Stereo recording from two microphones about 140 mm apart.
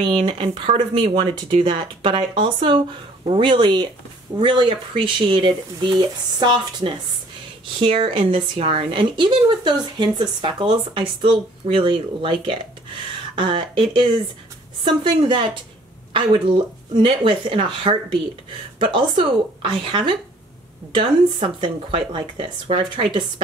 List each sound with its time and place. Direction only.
0.0 s speech: 35° right (ahead or behind)